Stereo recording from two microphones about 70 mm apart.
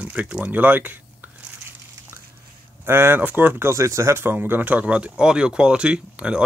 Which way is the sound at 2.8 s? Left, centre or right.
Right.